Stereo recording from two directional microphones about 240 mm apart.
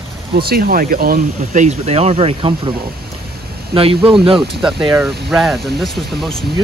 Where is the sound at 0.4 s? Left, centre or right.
Right.